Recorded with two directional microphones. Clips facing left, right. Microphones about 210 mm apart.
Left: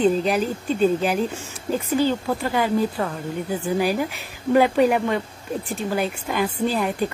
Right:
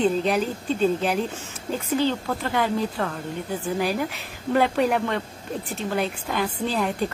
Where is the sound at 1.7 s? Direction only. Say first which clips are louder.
Left 3 dB; 5° left (ahead or behind).